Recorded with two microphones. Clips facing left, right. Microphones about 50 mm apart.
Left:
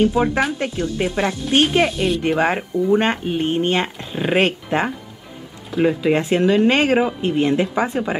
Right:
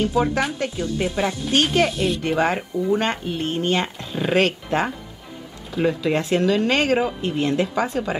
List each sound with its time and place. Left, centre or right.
0.0 s speech: left
1.9 s speech: centre
2.2 s speech: centre